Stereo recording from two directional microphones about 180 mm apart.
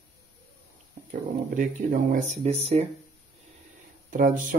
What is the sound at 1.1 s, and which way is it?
Speech, 50° right (ahead or behind).